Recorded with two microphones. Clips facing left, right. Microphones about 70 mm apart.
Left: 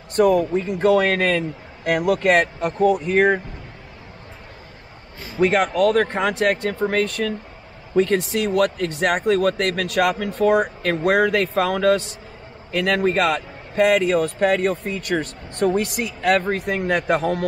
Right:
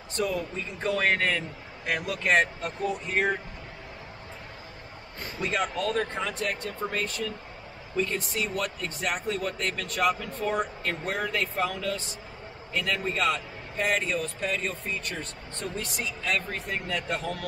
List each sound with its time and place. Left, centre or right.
0.1 s a man's voice: left
5.4 s a man's voice: left